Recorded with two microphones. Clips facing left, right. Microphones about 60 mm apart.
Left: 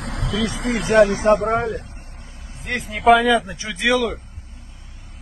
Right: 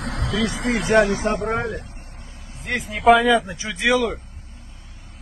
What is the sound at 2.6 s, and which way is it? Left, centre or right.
Speech, centre.